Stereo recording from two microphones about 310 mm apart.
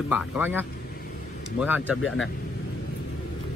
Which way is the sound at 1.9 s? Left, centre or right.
Left.